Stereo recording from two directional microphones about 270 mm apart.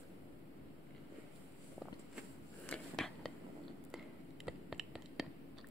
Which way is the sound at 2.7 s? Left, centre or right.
Centre.